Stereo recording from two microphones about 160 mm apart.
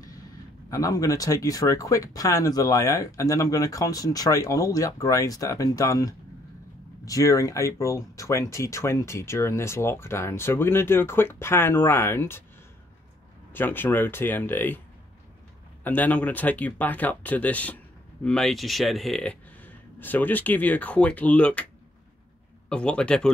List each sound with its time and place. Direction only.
0.7 s speech: 20° left (ahead or behind)
13.5 s speech: 10° left (ahead or behind)
15.8 s speech: 10° left (ahead or behind)
22.7 s speech: 5° left (ahead or behind)